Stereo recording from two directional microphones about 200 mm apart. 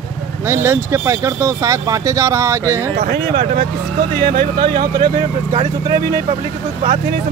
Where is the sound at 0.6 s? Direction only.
10° right (ahead or behind).